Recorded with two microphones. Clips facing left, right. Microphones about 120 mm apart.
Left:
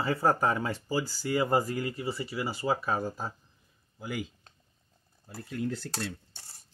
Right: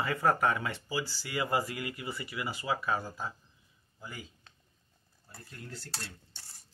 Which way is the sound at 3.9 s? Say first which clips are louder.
Left 10 dB; 90° left.